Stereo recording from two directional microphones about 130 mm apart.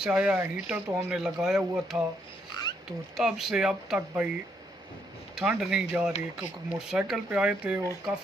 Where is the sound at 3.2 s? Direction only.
5° right (ahead or behind).